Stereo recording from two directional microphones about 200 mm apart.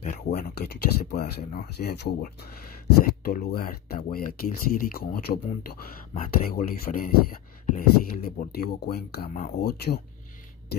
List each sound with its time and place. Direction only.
0.0 s speech: 45° left (ahead or behind)